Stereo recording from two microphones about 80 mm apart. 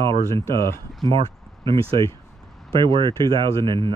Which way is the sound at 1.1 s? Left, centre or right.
Right.